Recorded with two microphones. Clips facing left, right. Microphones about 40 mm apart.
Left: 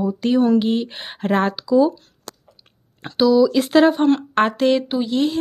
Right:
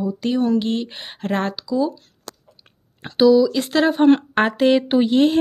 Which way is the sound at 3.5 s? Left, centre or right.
Centre.